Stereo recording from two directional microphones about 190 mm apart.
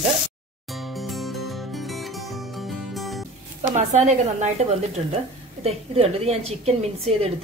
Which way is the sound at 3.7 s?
35° right (ahead or behind).